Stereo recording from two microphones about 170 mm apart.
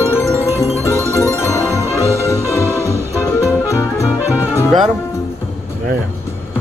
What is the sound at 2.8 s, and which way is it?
Music, 20° left (ahead or behind).